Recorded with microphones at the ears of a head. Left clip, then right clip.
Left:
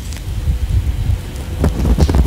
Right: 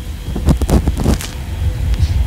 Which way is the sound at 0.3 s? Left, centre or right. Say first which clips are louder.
Right 13 dB; right.